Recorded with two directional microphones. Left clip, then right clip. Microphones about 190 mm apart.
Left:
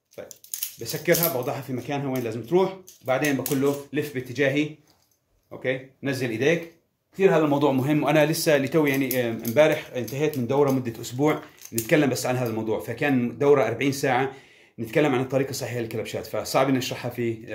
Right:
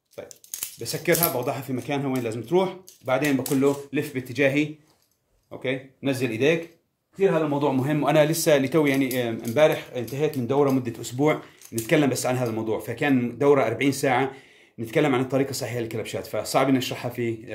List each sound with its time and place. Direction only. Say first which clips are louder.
0.2 s a sound: even; 25° right (ahead or behind)
0.8 s speech: even; 25° right (ahead or behind)
7.5 s a man's voice: left 2 dB; 15° left (ahead or behind)
7.8 s speech: even; 5° right (ahead or behind)